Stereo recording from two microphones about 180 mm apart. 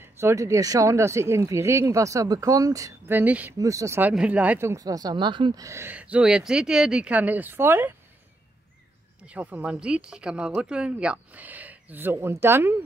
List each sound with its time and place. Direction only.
0.0 s speech: 15° right (ahead or behind)
9.2 s speech: 10° right (ahead or behind)